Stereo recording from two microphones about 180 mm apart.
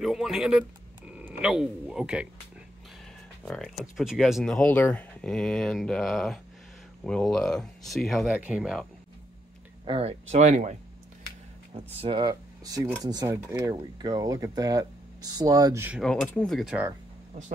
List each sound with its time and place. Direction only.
0.0 s a sound: centre (ahead or behind)
1.4 s a man's voice: 5° right (ahead or behind)
3.4 s speech: centre (ahead or behind)
9.8 s speech: 35° right (ahead or behind); by 16.0 s 15° right (ahead or behind)
16.0 s speech: 5° left (ahead or behind)